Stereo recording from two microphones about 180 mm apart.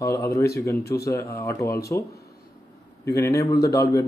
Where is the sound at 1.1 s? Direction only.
15° left (ahead or behind).